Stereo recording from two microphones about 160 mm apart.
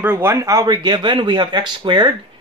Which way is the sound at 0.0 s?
15° right (ahead or behind).